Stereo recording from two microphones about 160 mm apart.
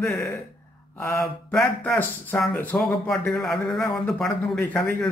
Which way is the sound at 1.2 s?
Centre (ahead or behind).